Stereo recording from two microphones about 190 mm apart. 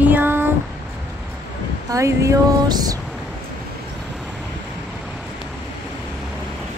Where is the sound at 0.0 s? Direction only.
10° right (ahead or behind).